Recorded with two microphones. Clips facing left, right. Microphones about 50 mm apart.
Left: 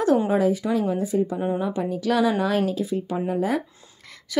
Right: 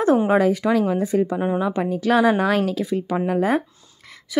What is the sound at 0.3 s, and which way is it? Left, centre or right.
A woman's voice, right.